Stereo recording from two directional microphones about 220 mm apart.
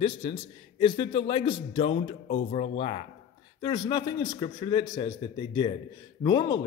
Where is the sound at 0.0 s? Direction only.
25° left (ahead or behind).